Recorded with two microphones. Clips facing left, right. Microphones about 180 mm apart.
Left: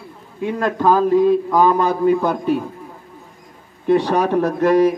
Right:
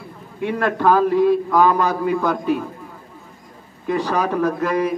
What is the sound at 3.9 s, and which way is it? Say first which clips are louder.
Speech: left 5 dB; 35° left (ahead or behind).